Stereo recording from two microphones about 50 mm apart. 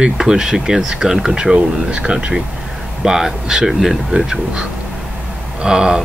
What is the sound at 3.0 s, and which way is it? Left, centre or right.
Speech, centre.